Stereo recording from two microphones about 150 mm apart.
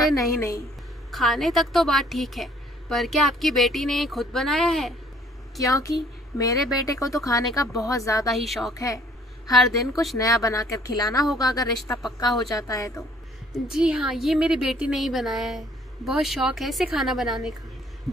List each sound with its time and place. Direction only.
0.0 s speech: 20° left (ahead or behind)
1.1 s a woman's voice: centre (ahead or behind)
5.6 s speech: 20° left (ahead or behind)
8.3 s a woman's voice: centre (ahead or behind)
8.7 s speech: 20° left (ahead or behind)
9.5 s a woman's voice: centre (ahead or behind)
10.1 s speech: 20° left (ahead or behind)
13.5 s a woman's voice: 5° right (ahead or behind)